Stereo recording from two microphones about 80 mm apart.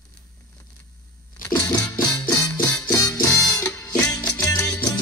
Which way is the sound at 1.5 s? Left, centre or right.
Left.